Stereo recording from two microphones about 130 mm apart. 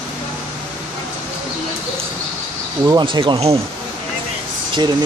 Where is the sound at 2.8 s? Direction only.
35° right (ahead or behind).